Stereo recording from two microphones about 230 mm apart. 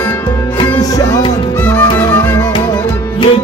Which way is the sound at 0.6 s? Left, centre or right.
Centre.